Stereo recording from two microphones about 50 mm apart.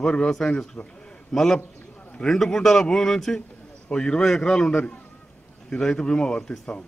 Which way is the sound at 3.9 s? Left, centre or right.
Centre.